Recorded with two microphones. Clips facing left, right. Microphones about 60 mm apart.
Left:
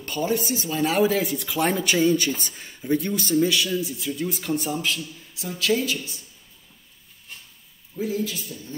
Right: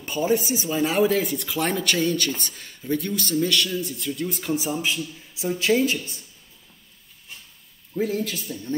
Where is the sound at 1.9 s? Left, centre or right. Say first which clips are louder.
Left 3 dB; centre.